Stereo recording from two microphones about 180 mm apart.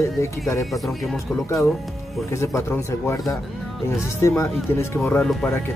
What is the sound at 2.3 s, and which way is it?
A man's voice, 15° left (ahead or behind).